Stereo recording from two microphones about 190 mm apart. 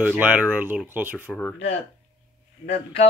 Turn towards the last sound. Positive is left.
turn(degrees=35)  # may be behind; listen again after turning